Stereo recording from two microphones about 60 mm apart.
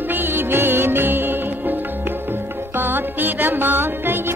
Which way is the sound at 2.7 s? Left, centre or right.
Right.